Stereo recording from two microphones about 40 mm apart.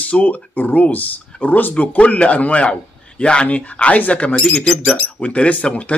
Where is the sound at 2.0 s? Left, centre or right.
Left.